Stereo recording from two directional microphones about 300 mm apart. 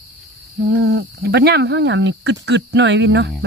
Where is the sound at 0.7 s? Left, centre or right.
Right.